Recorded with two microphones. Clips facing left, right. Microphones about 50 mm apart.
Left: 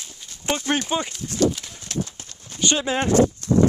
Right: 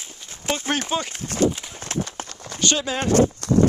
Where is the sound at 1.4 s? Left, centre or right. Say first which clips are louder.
Even; right.